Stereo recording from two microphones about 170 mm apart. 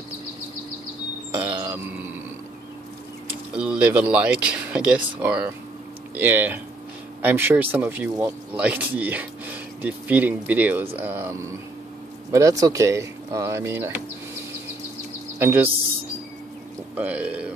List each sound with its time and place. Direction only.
3.5 s speech: 5° right (ahead or behind)
15.3 s speech: 10° right (ahead or behind)
16.9 s a sound: 10° right (ahead or behind)